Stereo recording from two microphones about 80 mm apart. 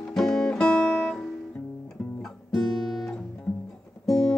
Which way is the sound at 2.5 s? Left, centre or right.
Centre.